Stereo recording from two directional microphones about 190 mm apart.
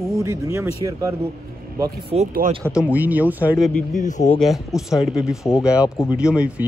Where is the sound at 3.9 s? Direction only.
40° left (ahead or behind).